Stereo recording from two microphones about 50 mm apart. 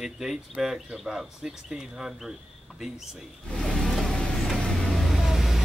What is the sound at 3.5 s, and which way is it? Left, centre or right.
Vehicle, centre.